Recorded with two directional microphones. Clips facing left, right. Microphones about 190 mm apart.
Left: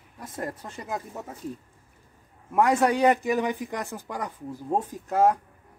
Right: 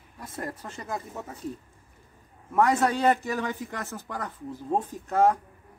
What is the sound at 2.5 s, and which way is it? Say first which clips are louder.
A man's voice: left 1 dB; 15° left (ahead or behind).